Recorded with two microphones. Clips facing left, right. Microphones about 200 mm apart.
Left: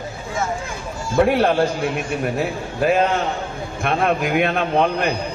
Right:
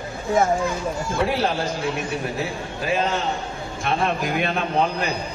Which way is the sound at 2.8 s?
60° left (ahead or behind).